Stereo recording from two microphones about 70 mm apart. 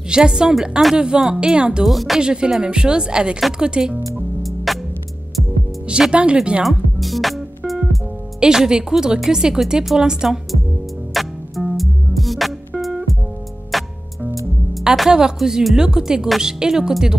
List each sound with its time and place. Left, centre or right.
0.1 s speech: centre
1.9 s speech: centre
2.2 s speech: centre
4.4 s music: centre
5.9 s speech: centre
6.6 s music: centre
8.4 s speech: centre
11.1 s music: centre
14.7 s speech: centre